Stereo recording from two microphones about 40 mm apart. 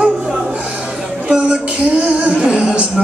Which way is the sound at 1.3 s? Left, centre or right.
Right.